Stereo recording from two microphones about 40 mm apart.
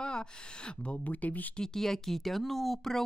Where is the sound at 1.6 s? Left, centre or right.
Centre.